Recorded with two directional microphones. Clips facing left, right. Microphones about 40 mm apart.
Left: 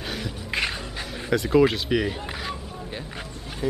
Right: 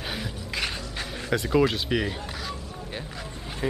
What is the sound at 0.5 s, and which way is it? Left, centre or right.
Music, left.